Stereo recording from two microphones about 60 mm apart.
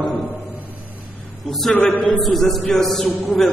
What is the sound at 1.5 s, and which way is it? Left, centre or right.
Speech, centre.